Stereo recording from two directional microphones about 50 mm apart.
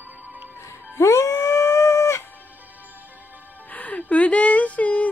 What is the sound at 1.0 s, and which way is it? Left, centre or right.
Music, left.